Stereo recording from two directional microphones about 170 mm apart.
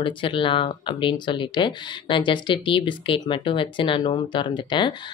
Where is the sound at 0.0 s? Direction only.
30° left (ahead or behind).